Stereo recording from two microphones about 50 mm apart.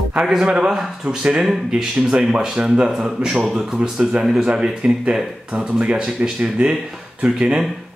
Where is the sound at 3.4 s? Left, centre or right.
Centre.